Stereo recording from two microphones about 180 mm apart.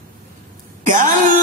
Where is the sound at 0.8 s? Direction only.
45° right (ahead or behind).